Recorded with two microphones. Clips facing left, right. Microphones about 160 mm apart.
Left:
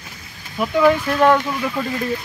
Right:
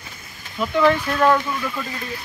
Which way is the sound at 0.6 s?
10° left (ahead or behind).